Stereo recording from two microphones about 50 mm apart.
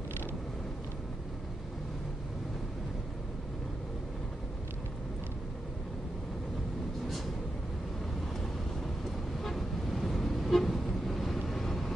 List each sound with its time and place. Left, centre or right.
9.4 s vehicle: centre